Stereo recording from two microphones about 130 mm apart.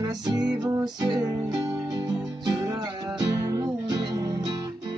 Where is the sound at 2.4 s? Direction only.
35° right (ahead or behind).